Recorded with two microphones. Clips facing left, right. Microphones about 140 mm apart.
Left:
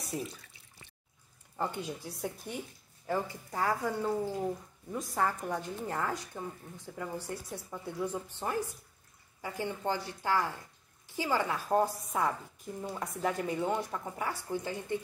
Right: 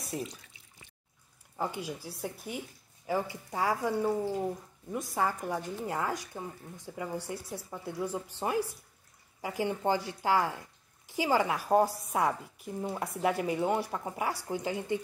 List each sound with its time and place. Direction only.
0.0 s speech: centre (ahead or behind)
1.6 s a woman's voice: 5° right (ahead or behind)